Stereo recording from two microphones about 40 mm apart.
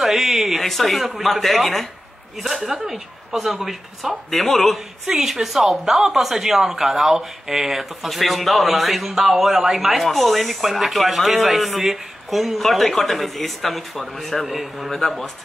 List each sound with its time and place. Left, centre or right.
0.0 s speech: centre
0.6 s a woman's voice: centre
2.4 s a woman's voice: centre
14.9 s speech: centre